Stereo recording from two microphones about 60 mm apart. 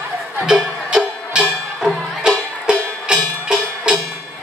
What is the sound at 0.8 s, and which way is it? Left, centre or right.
Music, centre.